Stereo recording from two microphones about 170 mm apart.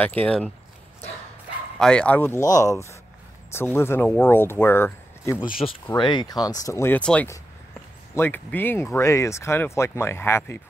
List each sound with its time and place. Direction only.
0.0 s speech: 10° left (ahead or behind)
1.8 s speech: 5° left (ahead or behind)